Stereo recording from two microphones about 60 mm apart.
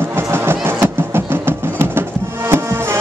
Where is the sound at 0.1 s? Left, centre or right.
Right.